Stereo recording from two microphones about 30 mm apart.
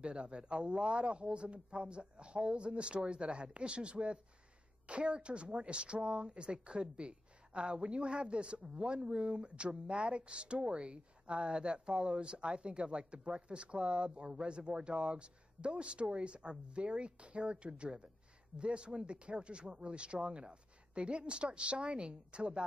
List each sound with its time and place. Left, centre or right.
0.0 s speech: right